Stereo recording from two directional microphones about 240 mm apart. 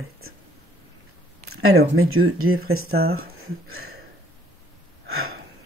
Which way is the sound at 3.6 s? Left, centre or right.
Right.